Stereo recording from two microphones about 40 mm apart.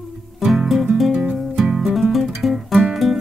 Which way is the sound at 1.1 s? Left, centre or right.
Right.